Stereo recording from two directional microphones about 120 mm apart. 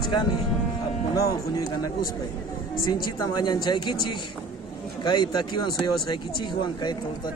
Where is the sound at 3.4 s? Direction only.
40° left (ahead or behind).